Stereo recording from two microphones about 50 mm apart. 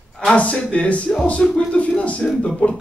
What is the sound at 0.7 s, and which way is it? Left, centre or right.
Speech, left.